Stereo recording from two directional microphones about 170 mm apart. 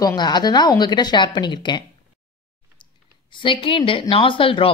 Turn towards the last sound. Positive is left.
turn(degrees=30)  # may be behind; listen again after turning